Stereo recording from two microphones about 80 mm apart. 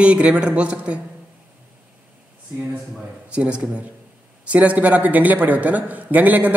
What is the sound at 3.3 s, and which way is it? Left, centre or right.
A man's voice, centre.